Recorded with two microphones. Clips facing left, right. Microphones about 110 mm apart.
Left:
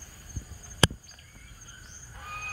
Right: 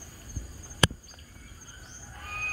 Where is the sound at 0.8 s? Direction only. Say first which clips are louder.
Left 1 dB; 30° left (ahead or behind).